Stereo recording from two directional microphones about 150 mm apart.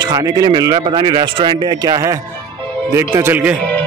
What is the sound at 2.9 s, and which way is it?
Speech, 15° right (ahead or behind).